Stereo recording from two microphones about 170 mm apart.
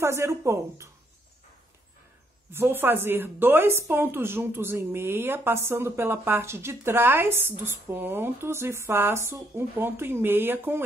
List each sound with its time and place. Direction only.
0.0 s a woman's voice: 15° right (ahead or behind)
2.5 s a woman's voice: 10° right (ahead or behind)